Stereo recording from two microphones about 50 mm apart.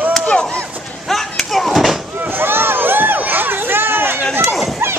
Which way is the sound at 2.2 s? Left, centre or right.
Right.